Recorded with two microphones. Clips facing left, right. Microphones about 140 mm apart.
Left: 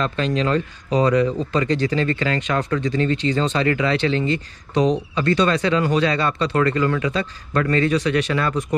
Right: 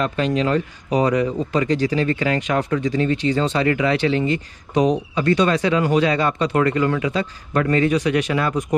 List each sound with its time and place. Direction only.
0.0 s speech: 15° right (ahead or behind)